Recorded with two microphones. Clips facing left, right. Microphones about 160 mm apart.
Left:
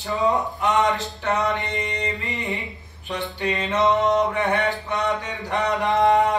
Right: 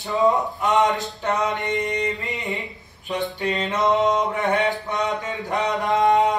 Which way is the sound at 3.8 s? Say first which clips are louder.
Even; 20° right (ahead or behind).